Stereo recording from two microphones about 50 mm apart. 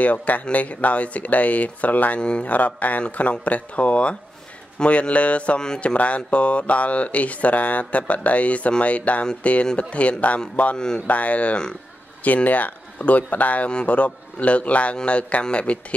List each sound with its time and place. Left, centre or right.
0.0 s speech: left
2.1 s speech: left
2.5 s speech: left